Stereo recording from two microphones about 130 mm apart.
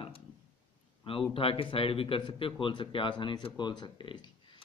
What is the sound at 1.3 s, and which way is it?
A man's voice, 45° left (ahead or behind).